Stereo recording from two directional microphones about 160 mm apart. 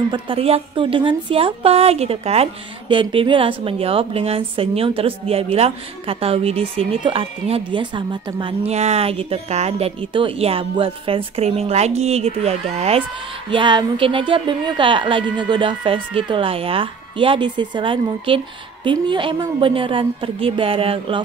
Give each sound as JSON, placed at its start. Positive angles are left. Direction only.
{"t": 0.1, "sound": "a woman's voice", "side_deg": -35}
{"t": 13.5, "sound": "a woman's voice", "side_deg": -30}